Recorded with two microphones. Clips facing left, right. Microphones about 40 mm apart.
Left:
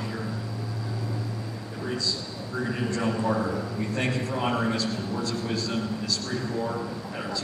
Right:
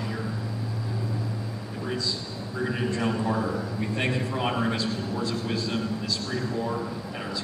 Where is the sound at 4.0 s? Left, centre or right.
Right.